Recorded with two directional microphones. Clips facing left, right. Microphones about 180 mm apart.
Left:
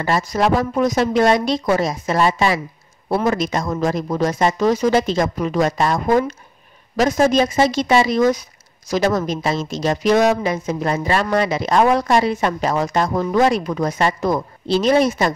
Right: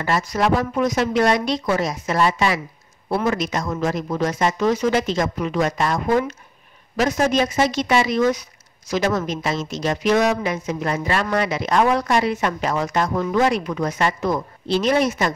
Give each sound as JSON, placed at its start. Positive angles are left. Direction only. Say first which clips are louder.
{"t": 0.0, "sound": "a woman's voice", "louder": "left 2 dB", "side_deg": 30}